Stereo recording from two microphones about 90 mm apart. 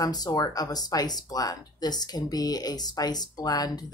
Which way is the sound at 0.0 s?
45° left (ahead or behind).